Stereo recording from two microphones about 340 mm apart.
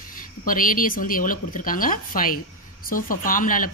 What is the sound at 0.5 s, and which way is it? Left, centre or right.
Speech, left.